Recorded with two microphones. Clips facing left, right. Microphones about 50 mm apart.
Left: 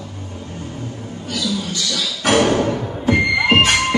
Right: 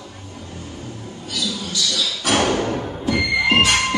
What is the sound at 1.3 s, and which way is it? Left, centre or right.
Music, left.